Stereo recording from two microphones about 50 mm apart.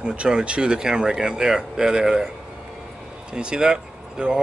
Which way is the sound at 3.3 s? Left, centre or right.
Centre.